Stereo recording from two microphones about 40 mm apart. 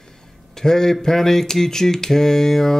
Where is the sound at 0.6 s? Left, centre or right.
Centre.